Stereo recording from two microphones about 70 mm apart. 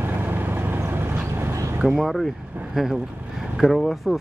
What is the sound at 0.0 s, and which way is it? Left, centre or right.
Vehicle, right.